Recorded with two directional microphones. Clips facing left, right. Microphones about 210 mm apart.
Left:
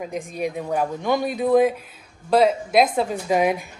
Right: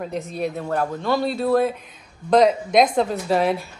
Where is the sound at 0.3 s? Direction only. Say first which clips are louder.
Left 1 dB; 10° left (ahead or behind).